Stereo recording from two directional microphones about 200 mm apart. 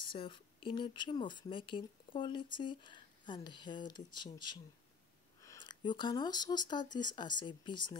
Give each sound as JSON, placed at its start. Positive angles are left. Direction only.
{"t": 0.0, "sound": "speech", "side_deg": 25}